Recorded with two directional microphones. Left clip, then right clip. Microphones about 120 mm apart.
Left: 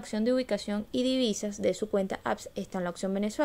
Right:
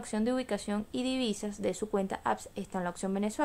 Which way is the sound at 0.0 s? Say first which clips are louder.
Left 4 dB; 15° left (ahead or behind).